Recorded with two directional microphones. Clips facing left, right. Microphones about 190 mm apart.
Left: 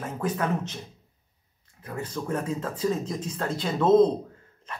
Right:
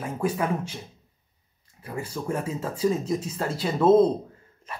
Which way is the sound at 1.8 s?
10° right (ahead or behind).